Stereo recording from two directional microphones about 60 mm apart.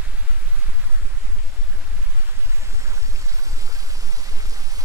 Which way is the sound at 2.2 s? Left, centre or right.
Right.